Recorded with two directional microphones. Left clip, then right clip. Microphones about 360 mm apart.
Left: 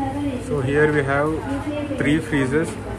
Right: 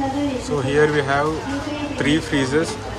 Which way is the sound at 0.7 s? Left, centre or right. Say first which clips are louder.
Right 1 dB; centre.